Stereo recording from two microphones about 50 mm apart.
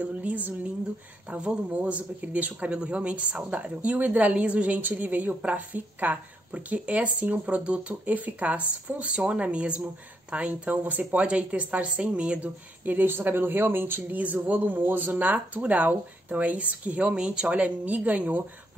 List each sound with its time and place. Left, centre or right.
0.0 s speech: right
1.7 s speech: right
12.8 s speech: right
14.1 s speech: right